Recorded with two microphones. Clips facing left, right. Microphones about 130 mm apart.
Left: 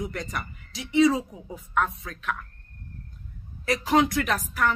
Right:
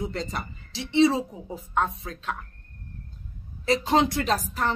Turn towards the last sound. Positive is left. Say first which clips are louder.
# even
turn(degrees=-25)  # may be behind; listen again after turning